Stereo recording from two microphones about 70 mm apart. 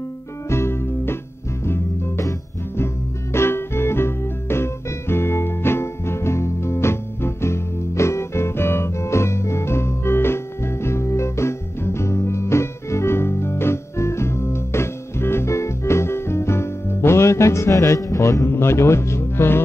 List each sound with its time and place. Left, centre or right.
0.5 s music: left
3.3 s music: left